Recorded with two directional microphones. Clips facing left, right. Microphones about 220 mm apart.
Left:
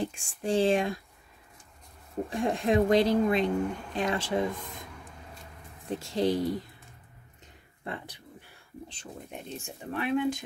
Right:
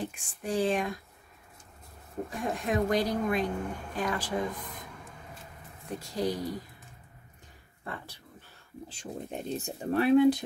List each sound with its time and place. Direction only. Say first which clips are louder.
0.0 s speech: left 4 dB; 30° left (ahead or behind)
2.2 s speech: left 5 dB; 30° left (ahead or behind)
5.9 s speech: left 4 dB; 25° left (ahead or behind)
7.8 s a sound: left 3 dB; 20° left (ahead or behind)
9.3 s speech: right 6 dB; 35° right (ahead or behind)